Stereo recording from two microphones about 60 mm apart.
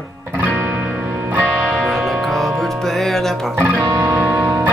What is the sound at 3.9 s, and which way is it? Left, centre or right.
Guitar, right.